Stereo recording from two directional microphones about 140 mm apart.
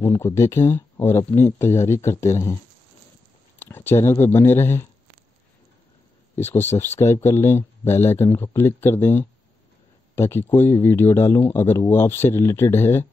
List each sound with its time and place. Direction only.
0.0 s speech: 20° left (ahead or behind)
6.3 s speech: 15° left (ahead or behind)